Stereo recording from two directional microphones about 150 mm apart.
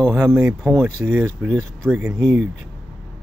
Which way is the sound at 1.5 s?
5° left (ahead or behind).